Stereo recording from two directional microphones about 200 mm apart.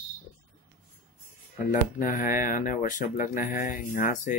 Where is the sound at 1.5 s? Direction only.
40° left (ahead or behind).